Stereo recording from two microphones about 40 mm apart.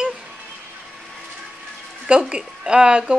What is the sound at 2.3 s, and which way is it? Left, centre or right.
Speech, right.